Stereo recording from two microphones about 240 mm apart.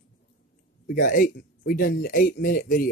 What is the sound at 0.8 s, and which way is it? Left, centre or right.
Speech, left.